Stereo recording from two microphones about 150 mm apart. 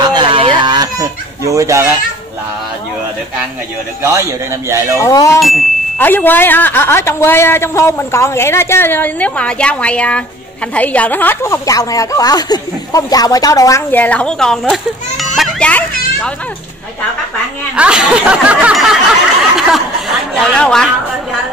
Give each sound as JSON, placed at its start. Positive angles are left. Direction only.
{"t": 0.1, "sound": "a sound", "side_deg": -35}
{"t": 4.0, "sound": "a man's voice", "side_deg": -20}
{"t": 4.9, "sound": "a woman's voice", "side_deg": 20}
{"t": 13.9, "sound": "speech", "side_deg": 10}
{"t": 17.7, "sound": "snicker", "side_deg": -5}
{"t": 19.5, "sound": "a woman's voice", "side_deg": 0}